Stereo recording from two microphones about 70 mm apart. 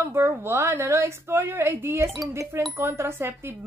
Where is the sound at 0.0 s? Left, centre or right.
Right.